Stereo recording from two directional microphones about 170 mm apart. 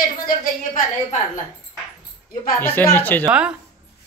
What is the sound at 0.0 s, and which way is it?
Speech, 55° left (ahead or behind).